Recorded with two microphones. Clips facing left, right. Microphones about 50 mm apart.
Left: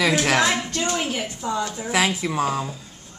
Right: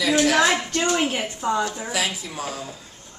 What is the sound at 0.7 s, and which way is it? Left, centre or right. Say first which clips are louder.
A woman's voice: right 3 dB; right.